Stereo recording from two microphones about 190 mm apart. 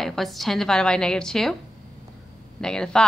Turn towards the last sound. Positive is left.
turn(degrees=5)  # may be behind; listen again after turning